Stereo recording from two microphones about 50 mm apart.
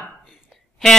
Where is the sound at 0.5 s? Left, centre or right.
Centre.